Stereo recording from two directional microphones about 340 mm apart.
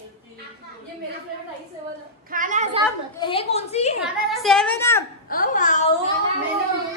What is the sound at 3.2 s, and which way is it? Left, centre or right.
Speech, centre.